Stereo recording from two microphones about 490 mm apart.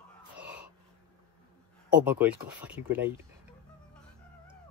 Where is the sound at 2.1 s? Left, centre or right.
Centre.